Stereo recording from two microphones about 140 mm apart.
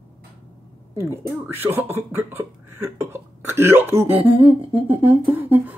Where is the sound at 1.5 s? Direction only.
15° right (ahead or behind).